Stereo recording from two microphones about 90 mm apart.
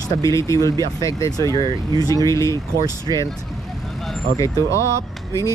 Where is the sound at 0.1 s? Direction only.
35° left (ahead or behind).